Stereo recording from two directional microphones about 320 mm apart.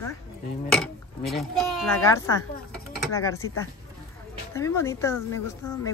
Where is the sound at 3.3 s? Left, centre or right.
Left.